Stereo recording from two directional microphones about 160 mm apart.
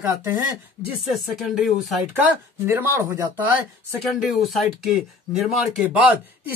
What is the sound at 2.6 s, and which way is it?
Speech, 15° right (ahead or behind).